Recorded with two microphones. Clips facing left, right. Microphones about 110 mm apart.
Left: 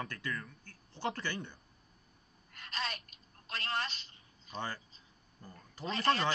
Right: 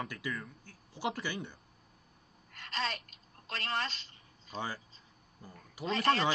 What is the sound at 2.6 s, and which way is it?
Gasp, 30° right (ahead or behind).